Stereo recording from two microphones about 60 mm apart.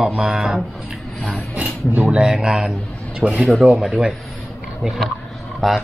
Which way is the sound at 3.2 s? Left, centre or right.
Right.